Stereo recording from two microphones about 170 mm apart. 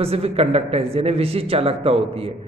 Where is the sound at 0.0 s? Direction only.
35° right (ahead or behind).